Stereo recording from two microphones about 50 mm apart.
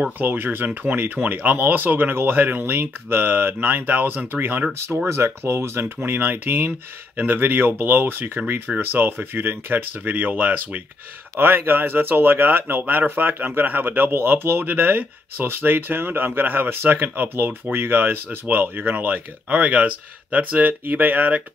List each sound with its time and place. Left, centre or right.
0.2 s speech: right
5.0 s speech: right
6.0 s speech: right